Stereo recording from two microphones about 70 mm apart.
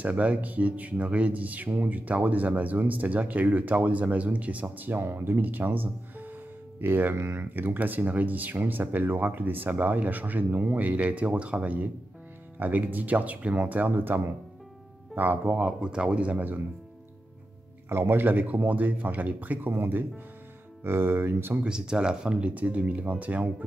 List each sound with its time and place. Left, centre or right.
0.0 s speech: centre
17.8 s speech: right
20.8 s speech: right
21.6 s speech: centre